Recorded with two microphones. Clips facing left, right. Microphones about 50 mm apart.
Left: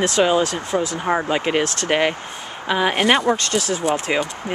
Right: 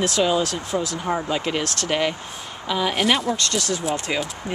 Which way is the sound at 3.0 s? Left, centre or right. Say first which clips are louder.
Left 4 dB; centre.